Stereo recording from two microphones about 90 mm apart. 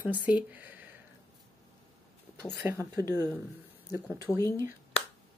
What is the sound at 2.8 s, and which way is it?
Speech, 35° right (ahead or behind).